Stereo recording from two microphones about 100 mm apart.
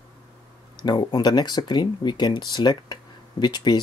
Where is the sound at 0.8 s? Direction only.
45° left (ahead or behind).